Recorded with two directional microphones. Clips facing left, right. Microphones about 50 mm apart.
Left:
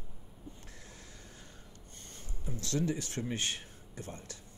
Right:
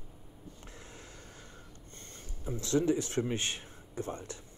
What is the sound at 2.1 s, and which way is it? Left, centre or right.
Speech, right.